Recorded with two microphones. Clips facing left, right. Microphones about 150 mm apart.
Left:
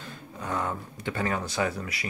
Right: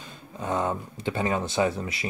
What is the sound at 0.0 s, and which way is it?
Speech, 20° right (ahead or behind).